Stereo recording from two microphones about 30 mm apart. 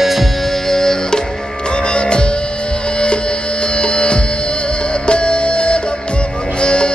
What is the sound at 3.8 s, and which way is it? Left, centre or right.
Music, left.